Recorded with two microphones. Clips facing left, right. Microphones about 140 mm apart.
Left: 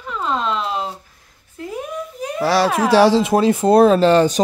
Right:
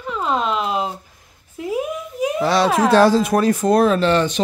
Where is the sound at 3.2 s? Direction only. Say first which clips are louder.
Left 1 dB; 25° left (ahead or behind).